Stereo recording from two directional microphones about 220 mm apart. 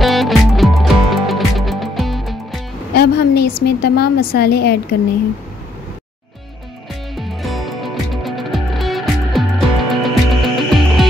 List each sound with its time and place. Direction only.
0.0 s music: centre (ahead or behind)
2.9 s music: 45° left (ahead or behind)
3.6 s a woman's voice: 45° left (ahead or behind)
7.2 s music: centre (ahead or behind)